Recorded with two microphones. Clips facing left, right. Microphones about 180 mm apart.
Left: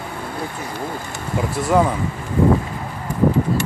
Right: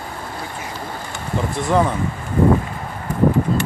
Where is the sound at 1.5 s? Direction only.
5° left (ahead or behind).